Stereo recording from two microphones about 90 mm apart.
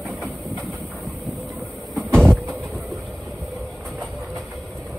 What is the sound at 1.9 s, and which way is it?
Vehicle, 5° left (ahead or behind).